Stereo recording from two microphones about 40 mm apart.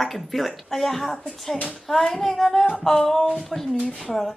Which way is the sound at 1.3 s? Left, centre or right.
Centre.